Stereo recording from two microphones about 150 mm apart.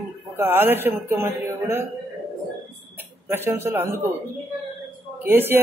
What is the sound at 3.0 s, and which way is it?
Speech, 15° right (ahead or behind).